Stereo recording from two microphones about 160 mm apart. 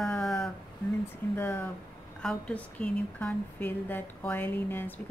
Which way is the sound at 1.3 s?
15° left (ahead or behind).